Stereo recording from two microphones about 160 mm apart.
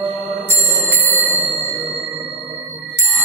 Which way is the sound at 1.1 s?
10° right (ahead or behind).